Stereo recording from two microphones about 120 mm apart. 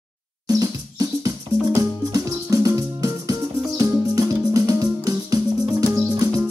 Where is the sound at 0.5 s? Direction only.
30° right (ahead or behind).